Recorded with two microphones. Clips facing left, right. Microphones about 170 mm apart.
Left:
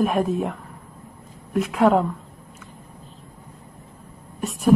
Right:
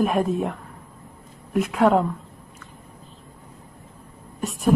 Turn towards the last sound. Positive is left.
turn(degrees=0)  # may be behind; listen again after turning